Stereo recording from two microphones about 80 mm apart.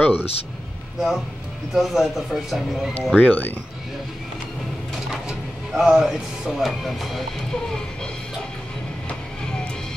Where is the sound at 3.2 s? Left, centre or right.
Left.